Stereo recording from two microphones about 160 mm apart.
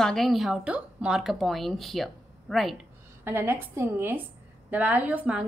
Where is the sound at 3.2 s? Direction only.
15° right (ahead or behind).